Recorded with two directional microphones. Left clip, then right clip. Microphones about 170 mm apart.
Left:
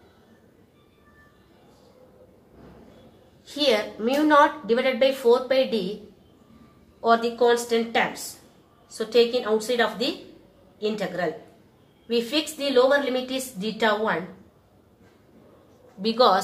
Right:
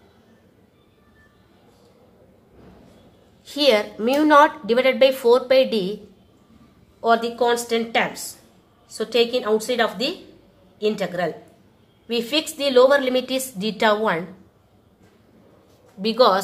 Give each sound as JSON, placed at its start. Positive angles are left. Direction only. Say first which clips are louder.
{"t": 3.4, "sound": "a woman's voice", "louder": "right 4 dB", "side_deg": -40}
{"t": 7.0, "sound": "a woman's voice", "louder": "right 1 dB", "side_deg": -35}
{"t": 16.0, "sound": "a woman's voice", "louder": "right 3 dB", "side_deg": -35}